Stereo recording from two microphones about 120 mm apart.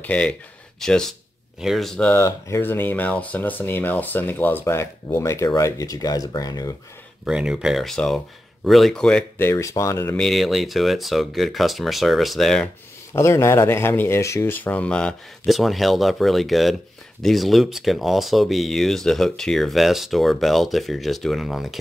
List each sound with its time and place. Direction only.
0.0 s speech: 10° left (ahead or behind)
2.1 s speech: 25° left (ahead or behind)
7.2 s speech: 5° right (ahead or behind)
9.4 s speech: 25° left (ahead or behind)
10.1 s speech: centre (ahead or behind)
13.1 s speech: 25° left (ahead or behind); by 21.7 s centre (ahead or behind)